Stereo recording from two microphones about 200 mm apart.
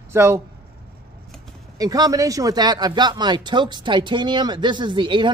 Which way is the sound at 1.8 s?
20° right (ahead or behind).